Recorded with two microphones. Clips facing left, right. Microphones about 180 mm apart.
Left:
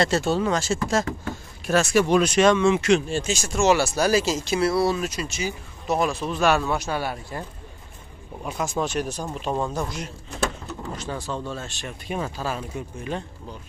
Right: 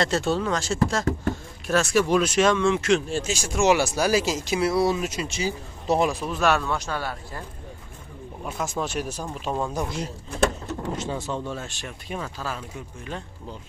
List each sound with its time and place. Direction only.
0.0 s speech: centre (ahead or behind); by 6.0 s 30° right (ahead or behind)
6.0 s speech: 10° right (ahead or behind)
6.6 s a man's voice: 10° left (ahead or behind)
8.5 s speech: centre (ahead or behind)
9.8 s speech: 30° right (ahead or behind); by 11.9 s 15° right (ahead or behind)
12.2 s speech: 20° left (ahead or behind)